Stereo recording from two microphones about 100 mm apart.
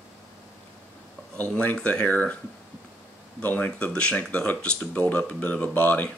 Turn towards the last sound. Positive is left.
turn(degrees=15)  # may be behind; listen again after turning